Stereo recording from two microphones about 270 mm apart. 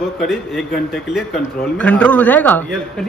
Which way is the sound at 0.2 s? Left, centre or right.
Centre.